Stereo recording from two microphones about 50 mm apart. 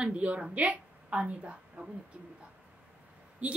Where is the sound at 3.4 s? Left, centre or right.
Right.